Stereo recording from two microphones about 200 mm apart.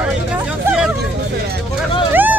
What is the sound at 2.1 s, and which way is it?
Hubbub, 10° right (ahead or behind).